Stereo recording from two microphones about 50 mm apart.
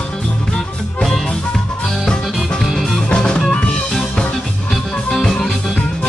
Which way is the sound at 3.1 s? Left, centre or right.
Centre.